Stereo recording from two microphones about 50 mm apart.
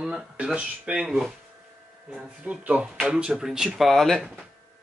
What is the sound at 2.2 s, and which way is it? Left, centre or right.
Speech, right.